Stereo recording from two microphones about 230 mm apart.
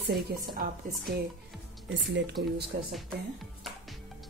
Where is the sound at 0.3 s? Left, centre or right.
Right.